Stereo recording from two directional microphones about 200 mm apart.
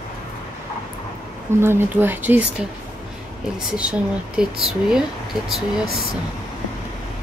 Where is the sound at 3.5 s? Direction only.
5° right (ahead or behind).